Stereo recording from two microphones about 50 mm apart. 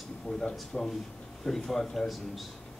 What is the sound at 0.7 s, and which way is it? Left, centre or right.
Speech, centre.